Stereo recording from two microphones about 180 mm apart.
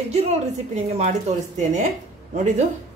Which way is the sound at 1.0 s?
40° right (ahead or behind).